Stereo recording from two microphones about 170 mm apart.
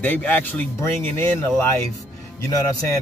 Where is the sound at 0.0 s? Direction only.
10° left (ahead or behind).